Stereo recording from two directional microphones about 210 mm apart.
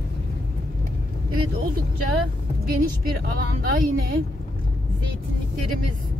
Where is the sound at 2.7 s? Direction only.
45° right (ahead or behind).